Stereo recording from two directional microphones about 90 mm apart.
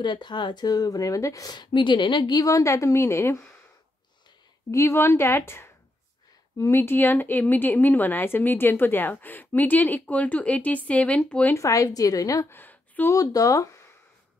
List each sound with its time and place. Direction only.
0.0 s speech: 55° left (ahead or behind); by 3.3 s 30° left (ahead or behind)
4.6 s a woman's voice: 30° left (ahead or behind); by 11.5 s 15° left (ahead or behind)
11.5 s a woman's voice: 35° left (ahead or behind)
12.4 s a sound: 20° left (ahead or behind)
13.1 s a woman's voice: 40° left (ahead or behind)